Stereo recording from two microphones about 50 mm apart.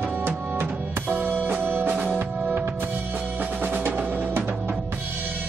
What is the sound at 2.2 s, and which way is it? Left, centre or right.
Music, right.